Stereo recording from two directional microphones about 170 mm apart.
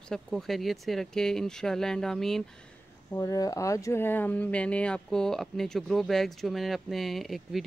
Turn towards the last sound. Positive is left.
turn(degrees=0)  # may be behind; listen again after turning